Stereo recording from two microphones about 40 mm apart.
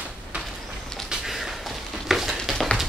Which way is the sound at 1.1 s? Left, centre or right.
Centre.